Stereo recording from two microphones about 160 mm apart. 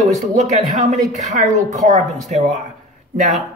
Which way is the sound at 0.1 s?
50° right (ahead or behind).